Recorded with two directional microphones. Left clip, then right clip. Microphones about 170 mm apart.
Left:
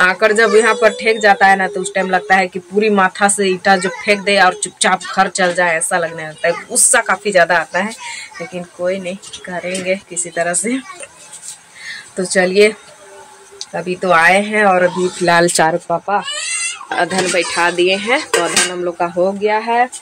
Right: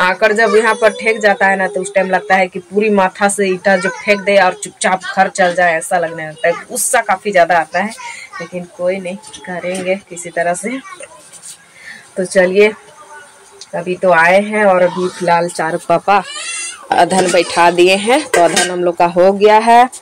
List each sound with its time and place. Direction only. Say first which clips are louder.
0.0 s speech: even; 15° left (ahead or behind)
8.8 s speech: right 2 dB; 20° left (ahead or behind)
12.2 s speech: right 2 dB; 5° left (ahead or behind)
13.7 s speech: right 2 dB; 15° left (ahead or behind)
15.6 s speech: left 5 dB; 65° left (ahead or behind)
16.9 s speech: right 6 dB; 20° right (ahead or behind)